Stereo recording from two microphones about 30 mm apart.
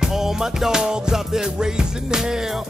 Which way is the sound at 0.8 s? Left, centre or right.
Right.